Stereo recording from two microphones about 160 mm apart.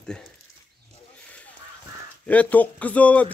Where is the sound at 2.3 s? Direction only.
10° left (ahead or behind).